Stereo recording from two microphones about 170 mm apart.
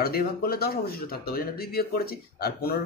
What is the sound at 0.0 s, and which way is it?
Speech, 65° left (ahead or behind).